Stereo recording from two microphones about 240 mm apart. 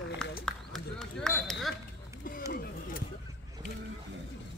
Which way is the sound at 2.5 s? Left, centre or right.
Left.